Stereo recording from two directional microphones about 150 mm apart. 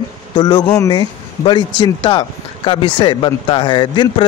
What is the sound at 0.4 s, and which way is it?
Speech, 35° left (ahead or behind).